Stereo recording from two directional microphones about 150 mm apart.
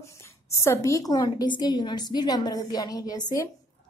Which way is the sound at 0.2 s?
20° left (ahead or behind).